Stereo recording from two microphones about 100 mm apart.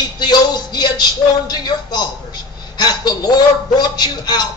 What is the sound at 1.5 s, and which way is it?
A man's voice, 45° left (ahead or behind).